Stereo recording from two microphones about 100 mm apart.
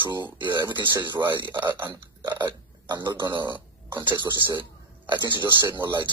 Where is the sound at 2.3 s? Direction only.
45° right (ahead or behind).